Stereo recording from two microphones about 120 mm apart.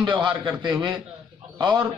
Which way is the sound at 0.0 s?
40° right (ahead or behind).